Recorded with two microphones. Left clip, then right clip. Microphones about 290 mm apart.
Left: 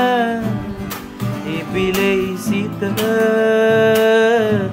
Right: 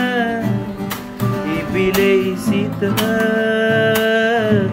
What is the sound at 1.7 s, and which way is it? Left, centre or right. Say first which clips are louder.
Music: right 2 dB; centre.